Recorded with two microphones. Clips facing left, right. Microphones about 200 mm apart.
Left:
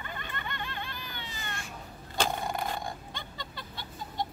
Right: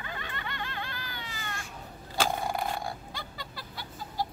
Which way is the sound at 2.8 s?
5° right (ahead or behind).